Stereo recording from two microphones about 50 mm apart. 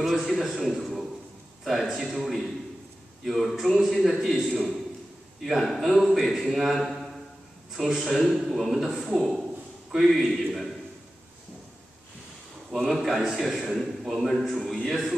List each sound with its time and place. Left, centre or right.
0.0 s a man's voice: centre
12.7 s a man's voice: centre